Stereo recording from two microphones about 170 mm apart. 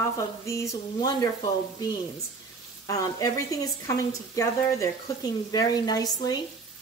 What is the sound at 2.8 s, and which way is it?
Speech, 20° left (ahead or behind).